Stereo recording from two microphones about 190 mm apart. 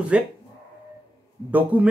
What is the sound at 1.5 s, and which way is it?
Speech, 10° right (ahead or behind).